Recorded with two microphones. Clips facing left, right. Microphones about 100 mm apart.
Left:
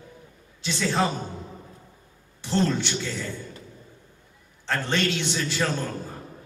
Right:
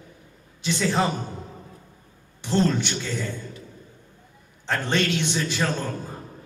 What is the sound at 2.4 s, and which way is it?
Speech, 15° right (ahead or behind).